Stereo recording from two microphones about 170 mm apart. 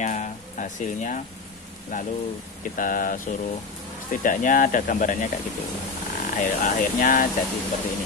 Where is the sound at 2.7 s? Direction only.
55° left (ahead or behind).